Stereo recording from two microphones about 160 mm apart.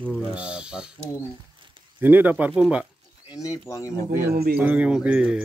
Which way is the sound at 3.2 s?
20° left (ahead or behind).